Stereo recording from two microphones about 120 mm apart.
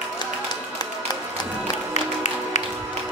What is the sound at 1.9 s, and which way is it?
Music, 75° left (ahead or behind).